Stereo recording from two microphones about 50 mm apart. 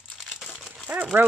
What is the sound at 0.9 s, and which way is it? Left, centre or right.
Dog, right.